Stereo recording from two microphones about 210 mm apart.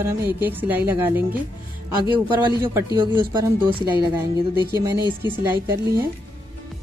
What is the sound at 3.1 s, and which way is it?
Speech, 25° right (ahead or behind).